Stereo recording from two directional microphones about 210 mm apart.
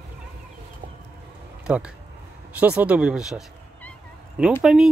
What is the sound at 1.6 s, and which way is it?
Speech, 5° right (ahead or behind).